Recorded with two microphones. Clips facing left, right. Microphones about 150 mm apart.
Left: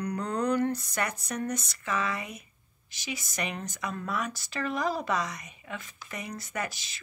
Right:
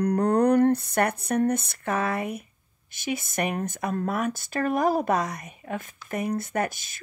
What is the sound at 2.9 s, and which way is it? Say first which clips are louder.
A child's voice: right 8 dB; 55° right (ahead or behind).